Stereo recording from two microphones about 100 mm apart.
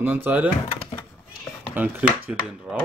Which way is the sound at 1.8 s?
15° right (ahead or behind).